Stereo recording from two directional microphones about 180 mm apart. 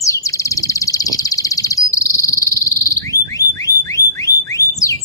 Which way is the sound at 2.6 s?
20° left (ahead or behind).